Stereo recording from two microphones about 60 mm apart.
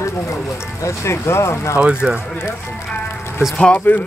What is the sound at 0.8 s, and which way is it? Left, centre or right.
Speech, left.